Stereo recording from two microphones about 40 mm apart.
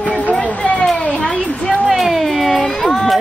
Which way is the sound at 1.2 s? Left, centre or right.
Centre.